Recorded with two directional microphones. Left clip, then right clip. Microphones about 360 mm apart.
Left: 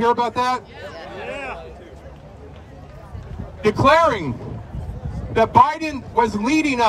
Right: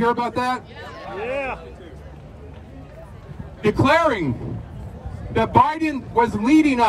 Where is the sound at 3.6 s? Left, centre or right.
Centre.